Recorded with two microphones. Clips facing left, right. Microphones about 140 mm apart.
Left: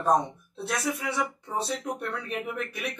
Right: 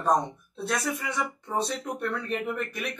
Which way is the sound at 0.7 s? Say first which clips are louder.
Even; centre (ahead or behind).